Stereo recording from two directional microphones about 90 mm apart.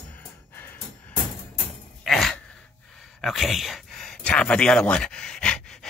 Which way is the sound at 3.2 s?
Centre (ahead or behind).